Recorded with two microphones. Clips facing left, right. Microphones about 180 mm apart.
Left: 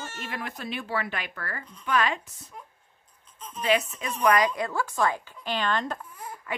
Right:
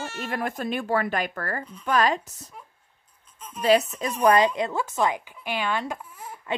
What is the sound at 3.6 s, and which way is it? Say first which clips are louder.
A woman's voice: right 5 dB; 35° right (ahead or behind).